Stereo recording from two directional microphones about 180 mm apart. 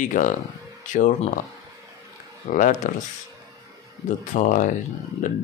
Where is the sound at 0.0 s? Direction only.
45° left (ahead or behind).